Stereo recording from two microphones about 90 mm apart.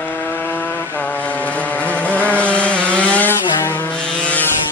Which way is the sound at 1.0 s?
15° left (ahead or behind).